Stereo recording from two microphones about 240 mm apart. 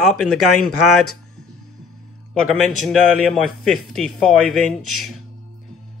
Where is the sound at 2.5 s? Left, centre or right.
Centre.